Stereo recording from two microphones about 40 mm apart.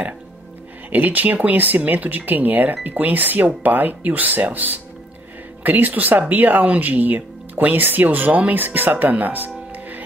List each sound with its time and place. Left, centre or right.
0.8 s speech: right
8.5 s speech: right
9.1 s music: right